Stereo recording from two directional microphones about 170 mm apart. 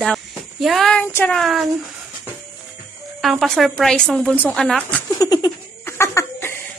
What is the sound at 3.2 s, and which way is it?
A woman's voice, centre (ahead or behind).